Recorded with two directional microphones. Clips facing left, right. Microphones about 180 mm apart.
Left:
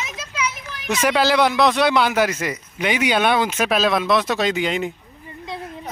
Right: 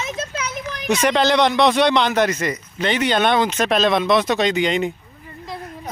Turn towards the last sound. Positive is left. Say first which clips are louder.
# right 2 dB
turn(degrees=5)  # may be behind; listen again after turning